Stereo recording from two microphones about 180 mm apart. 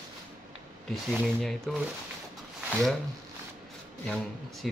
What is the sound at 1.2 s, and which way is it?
Speech, centre (ahead or behind).